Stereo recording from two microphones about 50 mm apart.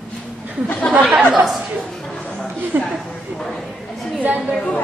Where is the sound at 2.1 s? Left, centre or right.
Centre.